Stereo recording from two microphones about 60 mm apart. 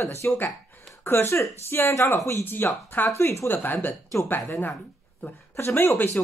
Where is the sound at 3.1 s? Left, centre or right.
Left.